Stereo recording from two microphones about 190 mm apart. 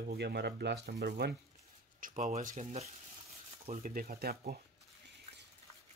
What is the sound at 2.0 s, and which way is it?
Speech, 45° right (ahead or behind).